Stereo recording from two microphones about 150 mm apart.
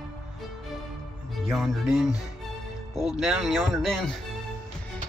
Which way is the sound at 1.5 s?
Centre (ahead or behind).